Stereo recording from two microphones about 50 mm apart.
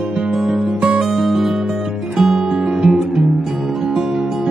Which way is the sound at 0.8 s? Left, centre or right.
Centre.